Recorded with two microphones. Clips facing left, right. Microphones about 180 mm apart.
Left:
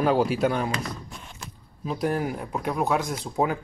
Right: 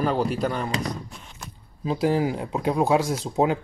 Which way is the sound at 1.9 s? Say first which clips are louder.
Right 4 dB; 25° right (ahead or behind).